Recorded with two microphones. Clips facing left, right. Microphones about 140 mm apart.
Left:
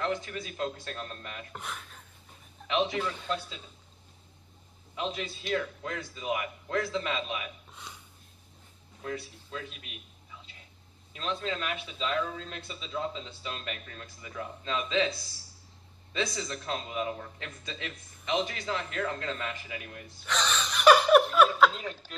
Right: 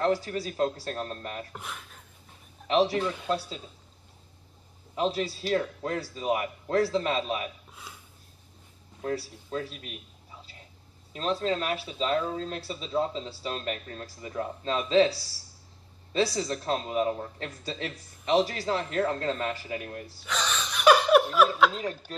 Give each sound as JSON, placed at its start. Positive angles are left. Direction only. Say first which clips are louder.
{"t": 0.0, "sound": "speech", "louder": "right 6 dB", "side_deg": -40}
{"t": 1.5, "sound": "speech", "louder": "even", "side_deg": 0}
{"t": 2.7, "sound": "speech", "louder": "right 5 dB", "side_deg": -35}
{"t": 4.9, "sound": "speech", "louder": "right 7 dB", "side_deg": -35}
{"t": 7.7, "sound": "a sound", "louder": "even", "side_deg": -5}
{"t": 9.0, "sound": "a man's voice", "louder": "right 5 dB", "side_deg": -35}
{"t": 20.2, "sound": "speech", "louder": "left 1 dB", "side_deg": 0}
{"t": 21.7, "sound": "speech", "louder": "right 5 dB", "side_deg": -35}